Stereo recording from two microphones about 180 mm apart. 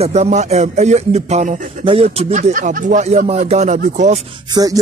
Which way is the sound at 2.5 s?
50° right (ahead or behind).